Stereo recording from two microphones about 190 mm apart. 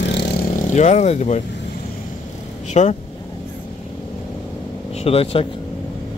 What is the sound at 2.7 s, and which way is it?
Speech, 35° left (ahead or behind).